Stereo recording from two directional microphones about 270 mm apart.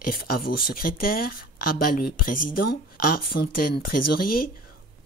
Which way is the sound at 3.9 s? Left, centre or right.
Left.